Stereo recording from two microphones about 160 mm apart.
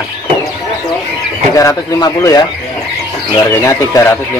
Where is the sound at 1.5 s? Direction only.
20° left (ahead or behind).